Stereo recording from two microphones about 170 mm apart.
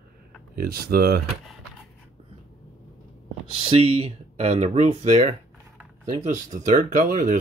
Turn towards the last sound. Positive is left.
turn(degrees=-50)  # may be behind; listen again after turning